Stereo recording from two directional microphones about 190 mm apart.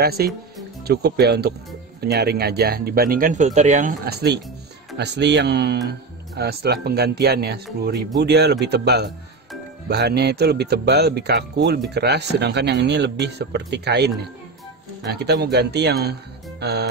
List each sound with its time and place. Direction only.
0.0 s speech: 55° right (ahead or behind); by 3.9 s 40° right (ahead or behind)
4.0 s speech: 55° right (ahead or behind)